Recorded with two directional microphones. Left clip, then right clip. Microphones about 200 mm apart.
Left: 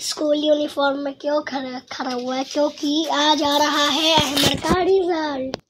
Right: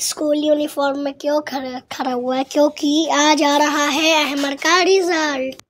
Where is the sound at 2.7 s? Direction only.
55° right (ahead or behind).